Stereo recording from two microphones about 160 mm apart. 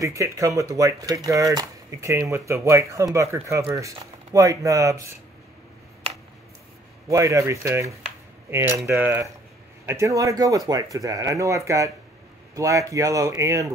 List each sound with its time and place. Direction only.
0.0 s speech: 20° right (ahead or behind)
7.1 s speech: 20° right (ahead or behind)